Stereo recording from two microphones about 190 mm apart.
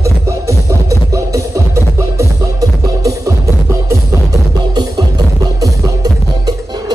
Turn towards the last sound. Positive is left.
turn(degrees=-20)  # may be behind; listen again after turning